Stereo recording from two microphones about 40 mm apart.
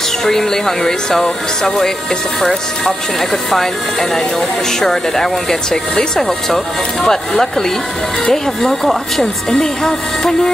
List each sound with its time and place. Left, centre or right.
0.2 s speech: centre